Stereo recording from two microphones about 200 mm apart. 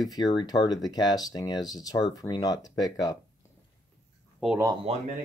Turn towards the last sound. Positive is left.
turn(degrees=-30)  # may be behind; listen again after turning